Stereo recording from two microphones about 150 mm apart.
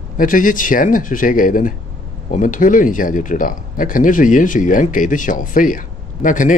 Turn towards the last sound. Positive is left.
turn(degrees=60)  # may be behind; listen again after turning